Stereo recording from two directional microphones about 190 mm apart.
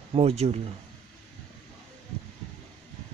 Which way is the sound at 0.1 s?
35° right (ahead or behind).